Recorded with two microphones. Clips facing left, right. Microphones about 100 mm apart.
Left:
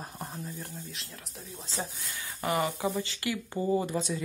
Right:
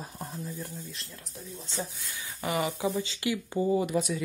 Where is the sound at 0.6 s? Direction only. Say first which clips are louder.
Right 1 dB; centre (ahead or behind).